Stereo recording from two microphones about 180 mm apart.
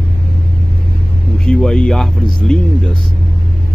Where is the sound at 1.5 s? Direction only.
5° left (ahead or behind).